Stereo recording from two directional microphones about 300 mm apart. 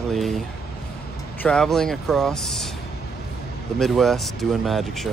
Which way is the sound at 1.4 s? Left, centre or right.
Centre.